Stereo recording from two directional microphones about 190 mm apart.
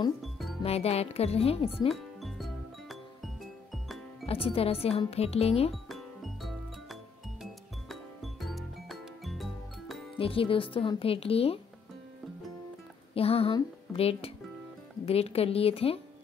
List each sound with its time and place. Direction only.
0.2 s music: centre (ahead or behind)
0.6 s speech: 30° left (ahead or behind)
2.1 s music: centre (ahead or behind)
4.3 s speech: 30° left (ahead or behind)
5.9 s music: centre (ahead or behind)
10.1 s speech: 30° left (ahead or behind)
13.1 s a woman's voice: 30° left (ahead or behind)